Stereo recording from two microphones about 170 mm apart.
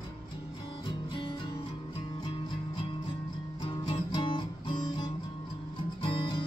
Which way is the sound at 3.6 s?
30° left (ahead or behind).